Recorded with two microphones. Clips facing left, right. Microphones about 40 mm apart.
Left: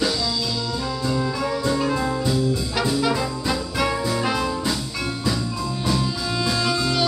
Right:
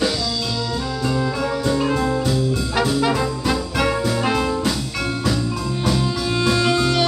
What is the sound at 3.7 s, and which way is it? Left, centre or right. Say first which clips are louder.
Music: right 2 dB; right.